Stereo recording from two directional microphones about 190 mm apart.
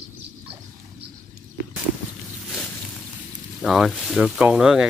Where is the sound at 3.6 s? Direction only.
Centre (ahead or behind).